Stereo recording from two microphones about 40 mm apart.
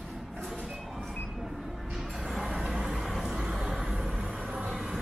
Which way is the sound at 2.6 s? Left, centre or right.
Centre.